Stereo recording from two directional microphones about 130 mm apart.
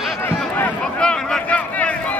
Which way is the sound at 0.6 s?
10° left (ahead or behind).